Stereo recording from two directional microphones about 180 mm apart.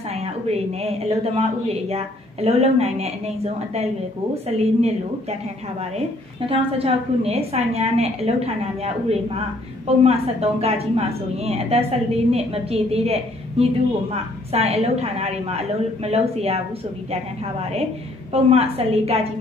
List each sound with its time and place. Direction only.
0.1 s speech: 35° right (ahead or behind)
6.5 s speech: 35° right (ahead or behind)
9.8 s speech: 35° right (ahead or behind)